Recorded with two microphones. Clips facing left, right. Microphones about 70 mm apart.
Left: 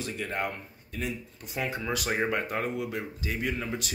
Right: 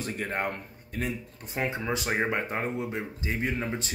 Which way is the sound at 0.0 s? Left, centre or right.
Right.